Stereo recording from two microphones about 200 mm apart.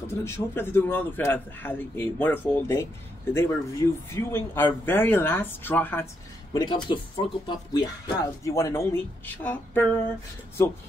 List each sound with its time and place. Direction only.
0.2 s speech: 10° left (ahead or behind)
6.5 s speech: 20° left (ahead or behind)